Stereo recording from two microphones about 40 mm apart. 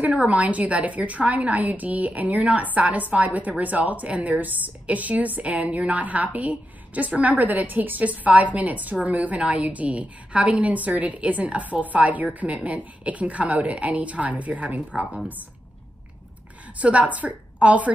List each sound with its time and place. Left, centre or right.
0.0 s a woman's voice: right
16.7 s a woman's voice: right